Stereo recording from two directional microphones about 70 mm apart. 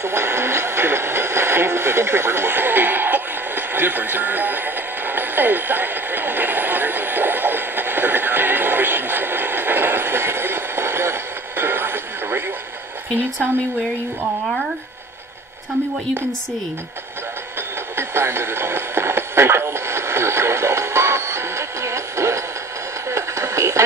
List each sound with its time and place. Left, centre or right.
0.0 s music: right
17.6 s radio: right